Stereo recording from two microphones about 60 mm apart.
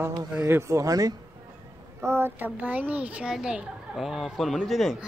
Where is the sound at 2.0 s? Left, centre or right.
Right.